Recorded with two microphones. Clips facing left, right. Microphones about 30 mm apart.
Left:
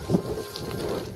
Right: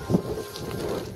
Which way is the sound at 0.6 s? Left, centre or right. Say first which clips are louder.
Even; centre.